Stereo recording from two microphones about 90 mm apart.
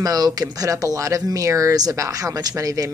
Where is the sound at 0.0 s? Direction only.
45° right (ahead or behind).